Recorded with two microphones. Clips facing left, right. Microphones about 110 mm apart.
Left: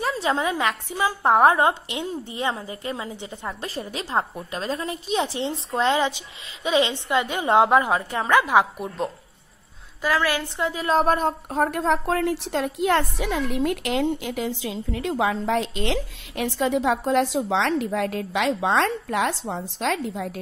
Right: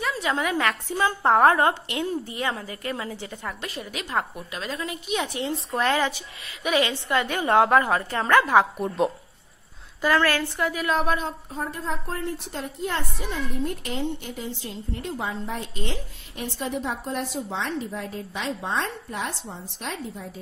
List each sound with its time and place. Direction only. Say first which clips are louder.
0.0 s a woman's voice: left 2 dB; 30° left (ahead or behind)
3.6 s a woman's voice: left 3 dB; 35° left (ahead or behind); by 8.8 s 15° left (ahead or behind)
8.8 s a woman's voice: right 4 dB; 5° right (ahead or behind)
10.3 s a woman's voice: even; 20° left (ahead or behind); by 11.3 s 45° left (ahead or behind)
11.5 s a woman's voice: left 10 dB; 70° left (ahead or behind)